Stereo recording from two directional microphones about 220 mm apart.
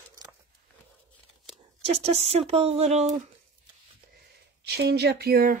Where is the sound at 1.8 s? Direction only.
30° right (ahead or behind).